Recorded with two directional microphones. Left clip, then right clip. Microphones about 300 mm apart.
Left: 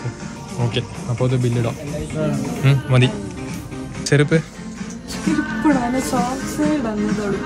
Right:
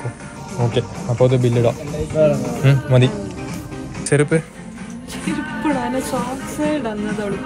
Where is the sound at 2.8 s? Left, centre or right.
Centre.